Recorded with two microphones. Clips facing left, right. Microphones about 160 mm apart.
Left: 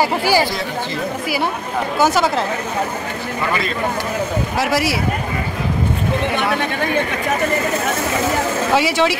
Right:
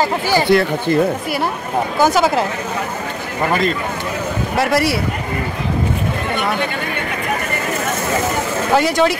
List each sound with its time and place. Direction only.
0.0 s speech: 10° left (ahead or behind)
0.5 s speech: 60° right (ahead or behind)
2.0 s speech: centre (ahead or behind)
4.6 s speech: centre (ahead or behind)
8.7 s speech: 5° left (ahead or behind)